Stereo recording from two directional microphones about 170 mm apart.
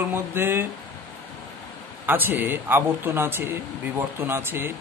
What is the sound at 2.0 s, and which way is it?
Speech, 10° right (ahead or behind).